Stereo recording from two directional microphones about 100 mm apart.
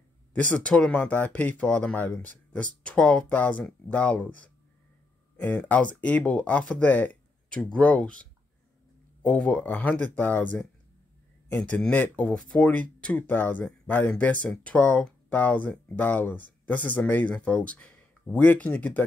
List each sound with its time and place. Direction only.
0.3 s speech: 15° left (ahead or behind)